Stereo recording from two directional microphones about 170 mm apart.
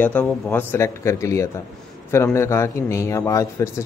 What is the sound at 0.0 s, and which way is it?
A man's voice, 10° left (ahead or behind).